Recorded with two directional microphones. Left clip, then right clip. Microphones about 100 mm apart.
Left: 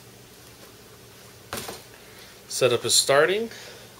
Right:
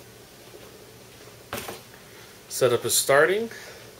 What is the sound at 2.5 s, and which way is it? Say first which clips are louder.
Speech: left 1 dB; 15° left (ahead or behind).